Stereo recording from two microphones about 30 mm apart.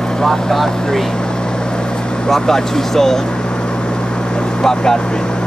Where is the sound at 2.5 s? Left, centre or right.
Centre.